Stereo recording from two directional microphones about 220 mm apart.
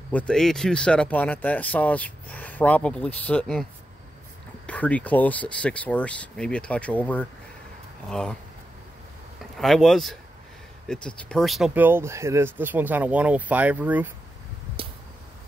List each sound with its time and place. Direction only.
0.1 s speech: 5° left (ahead or behind)
4.6 s speech: 5° left (ahead or behind)
9.4 s speech: centre (ahead or behind)
14.8 s a sound: 25° right (ahead or behind)